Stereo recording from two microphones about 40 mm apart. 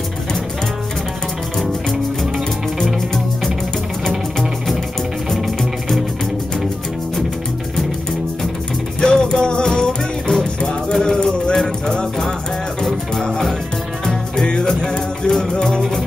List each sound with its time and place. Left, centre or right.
5.3 s music: centre
9.0 s music: centre
14.0 s music: centre